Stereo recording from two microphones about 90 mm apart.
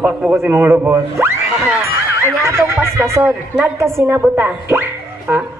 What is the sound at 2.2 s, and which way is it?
Music, 30° right (ahead or behind).